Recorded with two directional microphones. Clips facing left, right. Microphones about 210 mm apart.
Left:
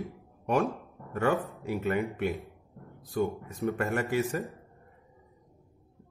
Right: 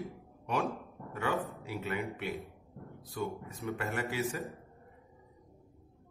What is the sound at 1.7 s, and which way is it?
A man's voice, 50° left (ahead or behind).